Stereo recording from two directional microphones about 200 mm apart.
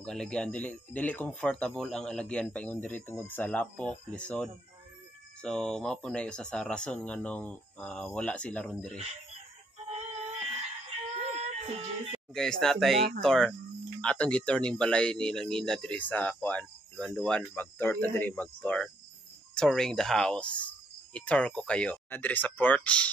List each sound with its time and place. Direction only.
0.0 s speech: 5° left (ahead or behind)
9.8 s chicken: 30° right (ahead or behind)
11.1 s music: 30° right (ahead or behind)
12.4 s speech: 5° left (ahead or behind)